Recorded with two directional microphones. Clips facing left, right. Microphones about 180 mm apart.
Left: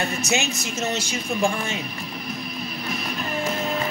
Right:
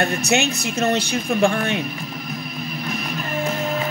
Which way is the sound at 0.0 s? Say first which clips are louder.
Right 5 dB; 60° right (ahead or behind).